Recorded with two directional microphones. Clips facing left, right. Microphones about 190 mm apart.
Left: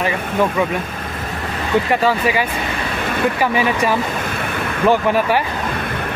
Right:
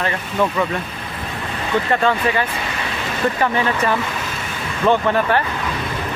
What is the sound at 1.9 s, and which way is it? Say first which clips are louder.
Speech: left 1 dB; 10° left (ahead or behind).